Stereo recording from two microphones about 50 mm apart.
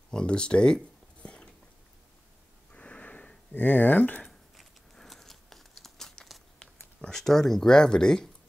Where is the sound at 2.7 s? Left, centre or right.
Left.